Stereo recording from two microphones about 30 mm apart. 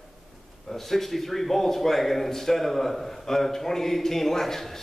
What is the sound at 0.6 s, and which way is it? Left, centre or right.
A man's voice, centre.